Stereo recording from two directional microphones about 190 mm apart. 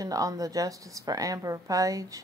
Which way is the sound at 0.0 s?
20° right (ahead or behind).